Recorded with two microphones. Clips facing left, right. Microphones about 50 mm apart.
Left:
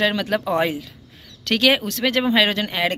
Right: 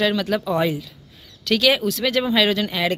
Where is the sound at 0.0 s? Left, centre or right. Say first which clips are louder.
Even; left.